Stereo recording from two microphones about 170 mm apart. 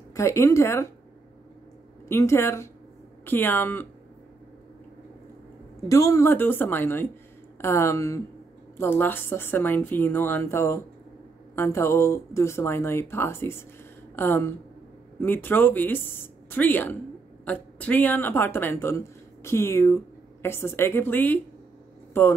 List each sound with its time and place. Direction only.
0.1 s speech: 15° left (ahead or behind)
2.0 s speech: 15° left (ahead or behind)
5.9 s speech: 20° left (ahead or behind)